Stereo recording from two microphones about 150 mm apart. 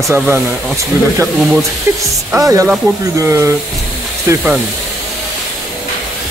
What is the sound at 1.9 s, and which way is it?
Music, 15° right (ahead or behind).